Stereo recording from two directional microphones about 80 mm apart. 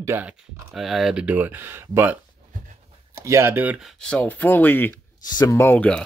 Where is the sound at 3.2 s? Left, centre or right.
Right.